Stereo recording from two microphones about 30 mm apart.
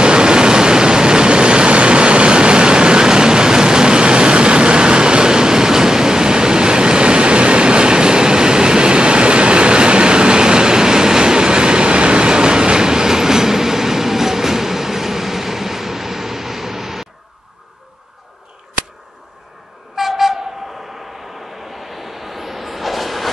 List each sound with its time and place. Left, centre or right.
0.0 s vehicle: right; by 17.1 s centre
20.0 s train: centre
21.8 s train: centre